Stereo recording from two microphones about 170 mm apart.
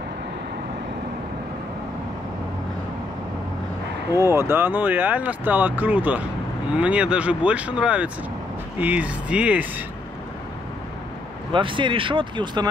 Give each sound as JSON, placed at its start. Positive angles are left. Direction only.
{"t": 4.1, "sound": "speech", "side_deg": -15}
{"t": 11.5, "sound": "speech", "side_deg": -30}